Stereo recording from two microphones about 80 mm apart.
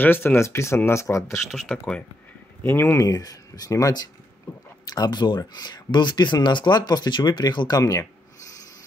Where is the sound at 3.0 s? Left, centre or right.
Left.